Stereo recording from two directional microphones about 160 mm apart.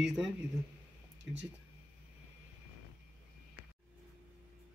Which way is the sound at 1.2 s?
90° right.